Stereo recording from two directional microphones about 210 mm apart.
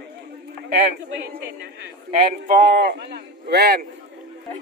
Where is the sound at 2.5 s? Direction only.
50° right (ahead or behind).